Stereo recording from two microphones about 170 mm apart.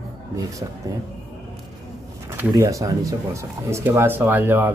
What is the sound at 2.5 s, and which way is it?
Speech, 20° right (ahead or behind).